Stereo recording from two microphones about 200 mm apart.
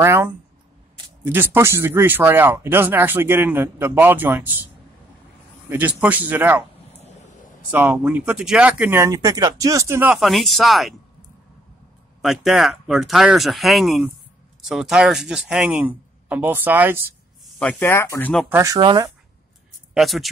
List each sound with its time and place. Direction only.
0.0 s speech: 10° right (ahead or behind)
5.7 s speech: 10° right (ahead or behind)
7.7 s speech: 5° right (ahead or behind)
10.1 s speech: centre (ahead or behind)
12.2 s speech: centre (ahead or behind)
17.6 s speech: 10° left (ahead or behind)
18.5 s speech: 15° right (ahead or behind)
19.9 s a man's voice: centre (ahead or behind)